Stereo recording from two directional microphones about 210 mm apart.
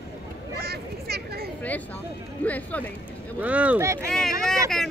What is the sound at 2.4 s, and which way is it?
Speech, 5° left (ahead or behind).